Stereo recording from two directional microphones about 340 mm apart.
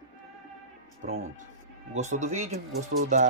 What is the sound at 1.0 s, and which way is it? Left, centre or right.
Speech, right.